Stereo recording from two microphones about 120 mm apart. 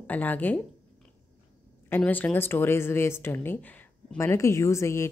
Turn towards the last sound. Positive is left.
turn(degrees=25)  # may be behind; listen again after turning